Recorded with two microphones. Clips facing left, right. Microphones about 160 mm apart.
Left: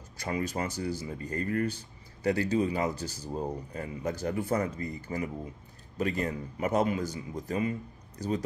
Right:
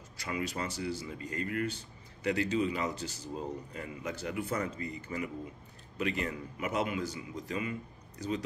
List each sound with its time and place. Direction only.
0.2 s speech: 40° left (ahead or behind)